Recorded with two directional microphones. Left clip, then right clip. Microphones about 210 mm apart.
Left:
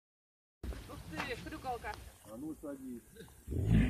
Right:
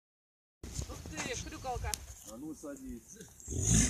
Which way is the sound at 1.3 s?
30° left (ahead or behind).